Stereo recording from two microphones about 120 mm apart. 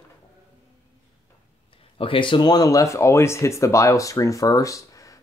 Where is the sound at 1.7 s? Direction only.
50° left (ahead or behind).